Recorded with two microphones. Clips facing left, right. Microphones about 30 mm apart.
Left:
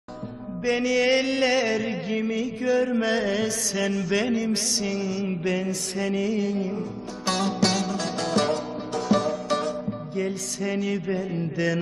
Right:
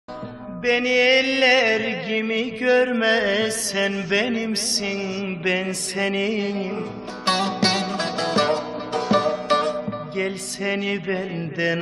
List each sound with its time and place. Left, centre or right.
0.7 s music: right
3.1 s music: right
5.4 s music: right
7.2 s music: right